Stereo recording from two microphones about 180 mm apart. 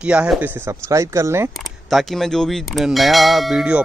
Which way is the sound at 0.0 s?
5° right (ahead or behind).